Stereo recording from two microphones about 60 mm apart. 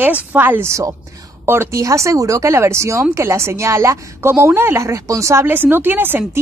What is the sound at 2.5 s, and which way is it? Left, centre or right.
Speech, right.